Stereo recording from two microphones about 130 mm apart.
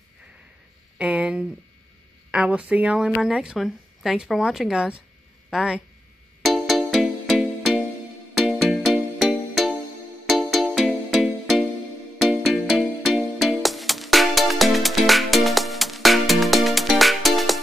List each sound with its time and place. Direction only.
0.9 s a woman's voice: 10° right (ahead or behind)
6.4 s music: centre (ahead or behind)